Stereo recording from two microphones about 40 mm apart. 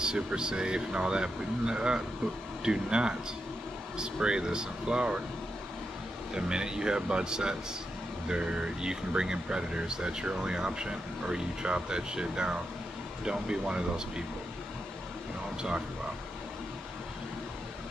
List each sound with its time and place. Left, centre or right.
0.0 s speech: right
6.3 s speech: right